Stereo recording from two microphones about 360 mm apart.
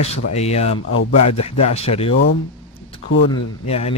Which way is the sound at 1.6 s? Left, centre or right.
Centre.